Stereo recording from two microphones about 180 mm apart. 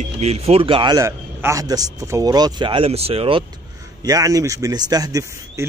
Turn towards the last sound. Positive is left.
turn(degrees=-20)  # may be behind; listen again after turning